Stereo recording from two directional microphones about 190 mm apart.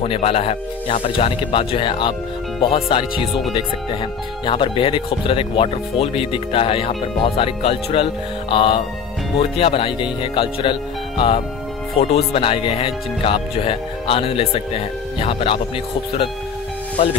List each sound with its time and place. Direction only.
0.0 s speech: 30° left (ahead or behind)
4.5 s speech: 25° left (ahead or behind)